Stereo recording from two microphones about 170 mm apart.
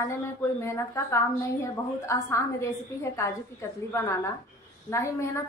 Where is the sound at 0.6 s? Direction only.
15° left (ahead or behind).